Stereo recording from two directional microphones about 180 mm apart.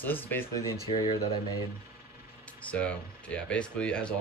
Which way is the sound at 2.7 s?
5° left (ahead or behind).